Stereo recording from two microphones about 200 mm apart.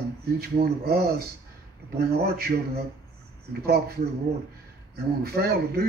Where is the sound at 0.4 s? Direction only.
50° right (ahead or behind).